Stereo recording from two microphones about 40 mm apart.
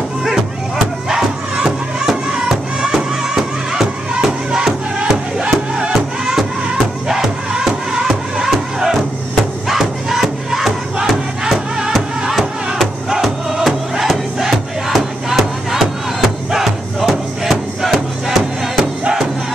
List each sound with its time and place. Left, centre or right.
1.0 s music: centre
9.7 s crowd: centre
12.3 s music: centre
13.1 s music: centre
13.7 s crowd: centre
15.3 s music: centre